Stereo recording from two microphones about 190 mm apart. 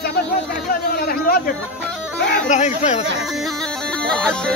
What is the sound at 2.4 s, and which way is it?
Speech, 40° left (ahead or behind).